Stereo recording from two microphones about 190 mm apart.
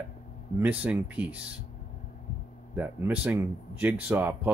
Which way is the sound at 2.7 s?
10° right (ahead or behind).